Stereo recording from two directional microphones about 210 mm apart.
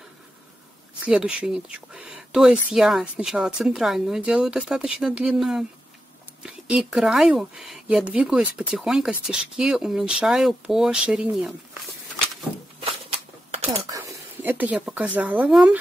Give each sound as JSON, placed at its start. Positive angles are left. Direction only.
{"t": 1.0, "sound": "speech", "side_deg": -5}
{"t": 13.5, "sound": "a sound", "side_deg": -30}
{"t": 13.8, "sound": "speech", "side_deg": -15}